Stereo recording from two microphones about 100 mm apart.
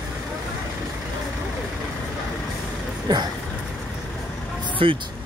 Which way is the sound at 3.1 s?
45° right (ahead or behind).